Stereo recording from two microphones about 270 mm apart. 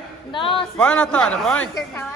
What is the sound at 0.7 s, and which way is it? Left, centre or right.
Speech, centre.